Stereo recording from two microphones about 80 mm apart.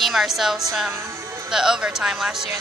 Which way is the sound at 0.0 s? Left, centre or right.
Centre.